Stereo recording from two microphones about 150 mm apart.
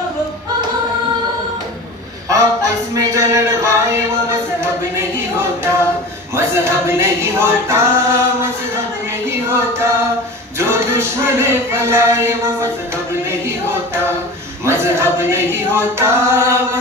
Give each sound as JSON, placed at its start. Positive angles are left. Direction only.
{"t": 2.2, "sound": "music", "side_deg": -20}
{"t": 5.4, "sound": "singing", "side_deg": -15}
{"t": 9.5, "sound": "music", "side_deg": -20}
{"t": 14.6, "sound": "singing", "side_deg": -20}